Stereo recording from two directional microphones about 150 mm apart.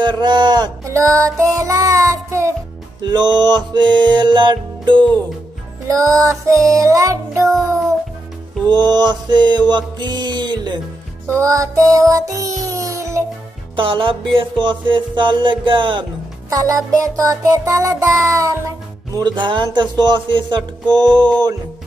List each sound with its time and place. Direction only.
0.0 s music: 30° right (ahead or behind)
5.9 s music: 20° right (ahead or behind)
8.6 s music: 30° right (ahead or behind)
12.6 s a sound: 20° right (ahead or behind)
13.7 s music: 35° right (ahead or behind)